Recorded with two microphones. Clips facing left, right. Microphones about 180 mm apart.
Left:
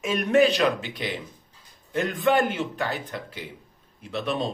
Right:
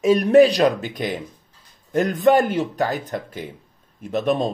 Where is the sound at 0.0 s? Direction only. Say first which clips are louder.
Right 7 dB; 35° right (ahead or behind).